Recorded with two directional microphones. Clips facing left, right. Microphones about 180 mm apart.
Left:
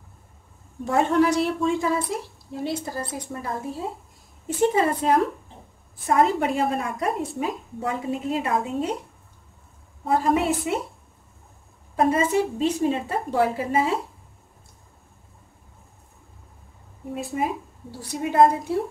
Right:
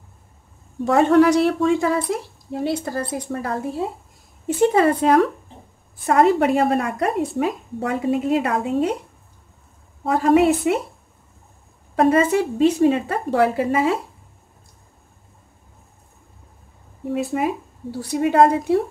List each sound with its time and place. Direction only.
0.8 s a woman's voice: 75° right (ahead or behind)
10.0 s a woman's voice: 75° right (ahead or behind)
11.9 s a woman's voice: 80° right
17.1 s a woman's voice: 75° right (ahead or behind)